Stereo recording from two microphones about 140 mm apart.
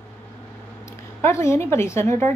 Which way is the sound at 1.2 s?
20° left (ahead or behind).